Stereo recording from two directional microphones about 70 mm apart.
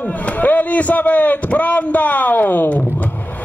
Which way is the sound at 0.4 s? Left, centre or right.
Left.